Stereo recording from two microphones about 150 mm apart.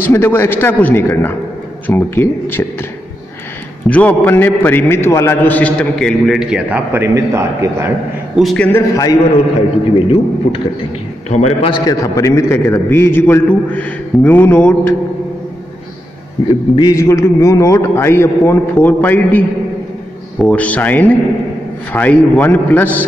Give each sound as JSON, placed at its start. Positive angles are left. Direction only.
{"t": 0.0, "sound": "a man's voice", "side_deg": 15}
{"t": 3.9, "sound": "a man's voice", "side_deg": 10}
{"t": 8.4, "sound": "a man's voice", "side_deg": 0}
{"t": 8.7, "sound": "a man's voice", "side_deg": 20}
{"t": 9.9, "sound": "a man's voice", "side_deg": 35}
{"t": 11.2, "sound": "a man's voice", "side_deg": 45}
{"t": 11.7, "sound": "a man's voice", "side_deg": 25}
{"t": 16.7, "sound": "a man's voice", "side_deg": 25}